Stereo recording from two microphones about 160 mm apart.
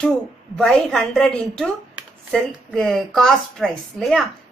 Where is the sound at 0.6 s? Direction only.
5° left (ahead or behind).